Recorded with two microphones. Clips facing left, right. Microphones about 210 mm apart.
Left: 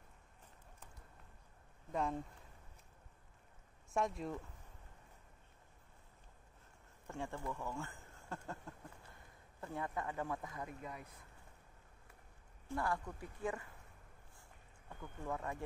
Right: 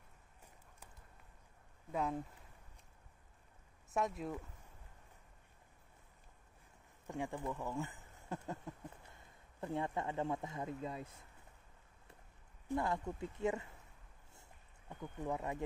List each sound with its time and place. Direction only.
1.9 s speech: 5° right (ahead or behind)
3.9 s speech: centre (ahead or behind)
7.1 s speech: 15° right (ahead or behind)
12.6 s speech: 20° right (ahead or behind)
15.0 s speech: 20° right (ahead or behind)